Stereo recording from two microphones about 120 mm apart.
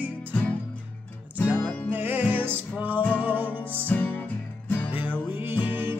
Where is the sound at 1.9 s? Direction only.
15° right (ahead or behind).